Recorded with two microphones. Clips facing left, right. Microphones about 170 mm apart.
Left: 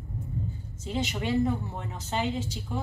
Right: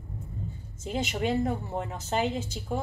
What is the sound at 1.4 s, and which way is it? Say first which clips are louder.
A woman's voice: left 1 dB; 45° right (ahead or behind).